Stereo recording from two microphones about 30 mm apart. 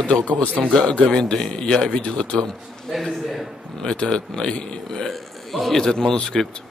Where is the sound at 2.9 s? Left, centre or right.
Centre.